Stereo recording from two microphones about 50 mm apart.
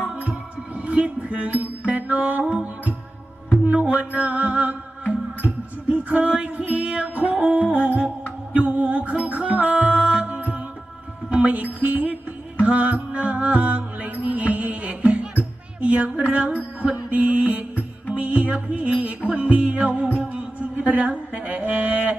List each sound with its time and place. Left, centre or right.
0.0 s music: right
9.9 s music: centre
10.2 s music: right